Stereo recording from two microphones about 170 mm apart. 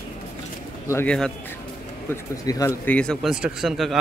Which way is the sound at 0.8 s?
10° left (ahead or behind).